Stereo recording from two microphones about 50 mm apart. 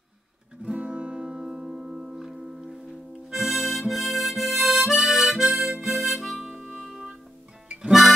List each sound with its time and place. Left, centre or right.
0.6 s music: right; by 2.8 s centre
3.3 s harmonica: centre